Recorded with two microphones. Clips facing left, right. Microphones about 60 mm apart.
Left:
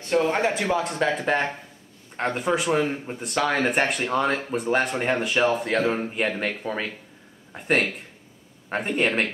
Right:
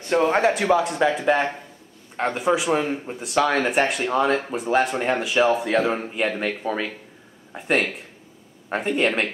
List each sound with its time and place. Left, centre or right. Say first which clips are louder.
0.1 s speech: right 2 dB; right
0.4 s speech: right 4 dB; centre